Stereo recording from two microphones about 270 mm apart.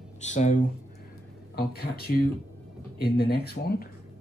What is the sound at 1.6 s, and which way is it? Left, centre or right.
Speech, left.